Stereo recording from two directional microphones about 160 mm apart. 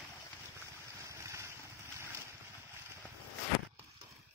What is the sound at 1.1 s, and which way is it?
Vehicle, 20° right (ahead or behind).